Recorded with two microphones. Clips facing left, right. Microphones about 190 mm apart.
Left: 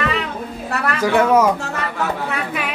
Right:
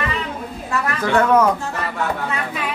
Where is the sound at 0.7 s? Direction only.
65° left (ahead or behind).